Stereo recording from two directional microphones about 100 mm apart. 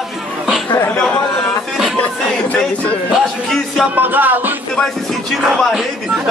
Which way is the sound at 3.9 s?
20° right (ahead or behind).